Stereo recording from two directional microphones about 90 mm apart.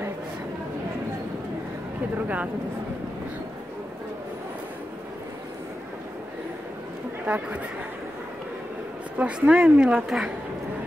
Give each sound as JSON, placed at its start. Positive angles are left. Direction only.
{"t": 2.2, "sound": "a woman's voice", "side_deg": -15}
{"t": 7.2, "sound": "a woman's voice", "side_deg": -15}
{"t": 9.2, "sound": "a woman's voice", "side_deg": -10}